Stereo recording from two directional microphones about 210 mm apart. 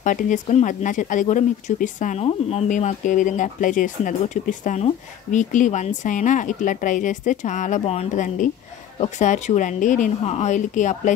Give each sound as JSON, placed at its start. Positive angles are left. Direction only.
{"t": 0.0, "sound": "speech", "side_deg": 35}